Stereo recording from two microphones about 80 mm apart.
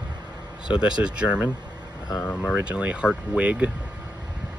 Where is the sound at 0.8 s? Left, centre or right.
Centre.